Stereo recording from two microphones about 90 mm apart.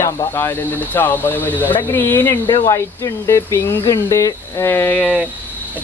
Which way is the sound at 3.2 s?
35° left (ahead or behind).